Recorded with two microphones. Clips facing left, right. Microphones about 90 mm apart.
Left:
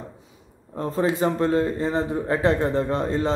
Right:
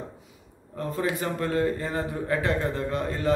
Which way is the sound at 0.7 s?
30° left (ahead or behind).